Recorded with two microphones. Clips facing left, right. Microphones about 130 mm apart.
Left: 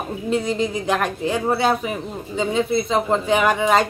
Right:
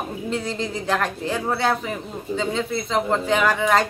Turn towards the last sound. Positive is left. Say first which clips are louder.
# left 2 dB
turn(degrees=20)  # may be behind; listen again after turning